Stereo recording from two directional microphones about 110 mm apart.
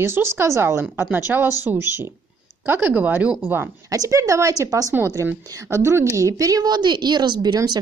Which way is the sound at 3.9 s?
30° right (ahead or behind).